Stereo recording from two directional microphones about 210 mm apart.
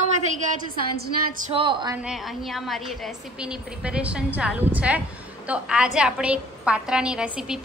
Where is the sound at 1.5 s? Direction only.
25° right (ahead or behind).